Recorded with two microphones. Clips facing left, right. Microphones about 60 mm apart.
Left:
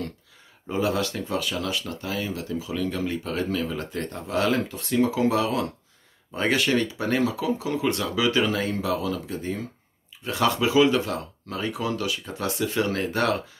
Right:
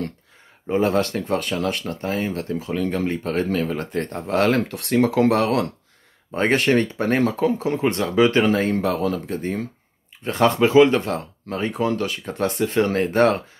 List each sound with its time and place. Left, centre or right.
0.7 s speech: right
6.3 s speech: right